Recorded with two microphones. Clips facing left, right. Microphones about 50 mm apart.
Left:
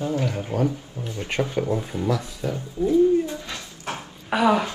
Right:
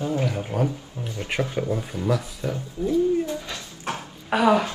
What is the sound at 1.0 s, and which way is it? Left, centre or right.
Speech, right.